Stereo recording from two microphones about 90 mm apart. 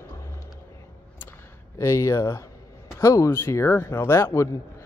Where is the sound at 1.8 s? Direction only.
30° left (ahead or behind).